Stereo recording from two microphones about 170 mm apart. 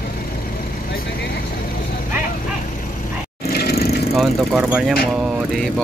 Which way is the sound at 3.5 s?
65° left (ahead or behind).